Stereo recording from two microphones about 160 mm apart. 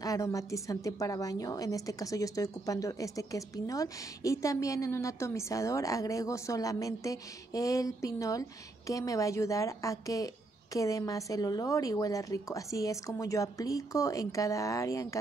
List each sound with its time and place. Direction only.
0.0 s a woman's voice: 20° left (ahead or behind)